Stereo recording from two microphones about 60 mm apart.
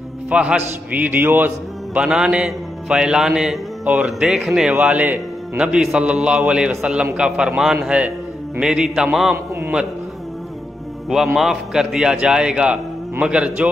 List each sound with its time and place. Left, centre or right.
0.3 s a man's voice: centre
1.0 s a man's voice: right
2.0 s a man's voice: centre
4.8 s a man's voice: right
5.6 s a man's voice: centre
11.1 s a man's voice: centre